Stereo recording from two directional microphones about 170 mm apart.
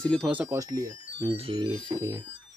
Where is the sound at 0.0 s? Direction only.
5° left (ahead or behind).